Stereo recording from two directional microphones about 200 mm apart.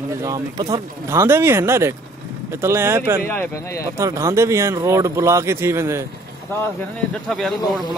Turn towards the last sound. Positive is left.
turn(degrees=0)  # may be behind; listen again after turning